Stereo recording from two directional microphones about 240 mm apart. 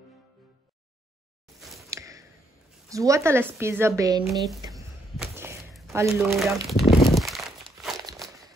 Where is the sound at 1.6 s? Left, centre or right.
Centre.